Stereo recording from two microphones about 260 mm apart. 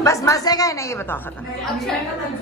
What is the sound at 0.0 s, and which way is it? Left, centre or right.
Speech, centre.